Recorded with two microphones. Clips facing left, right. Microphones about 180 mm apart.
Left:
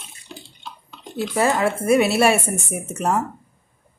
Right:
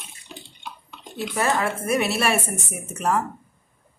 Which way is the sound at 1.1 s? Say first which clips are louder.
Left 4 dB; 25° left (ahead or behind).